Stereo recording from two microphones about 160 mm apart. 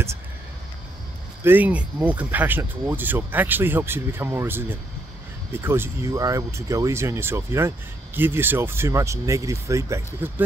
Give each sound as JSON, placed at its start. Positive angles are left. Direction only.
{"t": 1.4, "sound": "speech", "side_deg": -10}